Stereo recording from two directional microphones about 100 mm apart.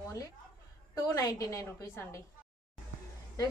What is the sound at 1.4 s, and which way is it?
Speech, 35° left (ahead or behind).